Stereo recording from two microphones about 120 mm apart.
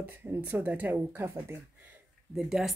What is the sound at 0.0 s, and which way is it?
Speech, 15° right (ahead or behind).